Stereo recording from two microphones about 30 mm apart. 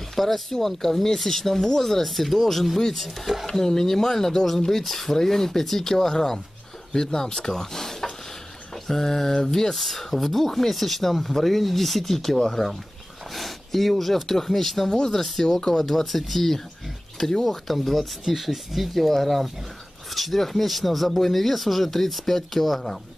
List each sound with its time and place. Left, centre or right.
0.1 s speech: centre
3.5 s speech: centre
9.8 s speech: centre
13.3 s a sound: centre
14.4 s speech: centre
14.9 s speech: centre
17.7 s speech: centre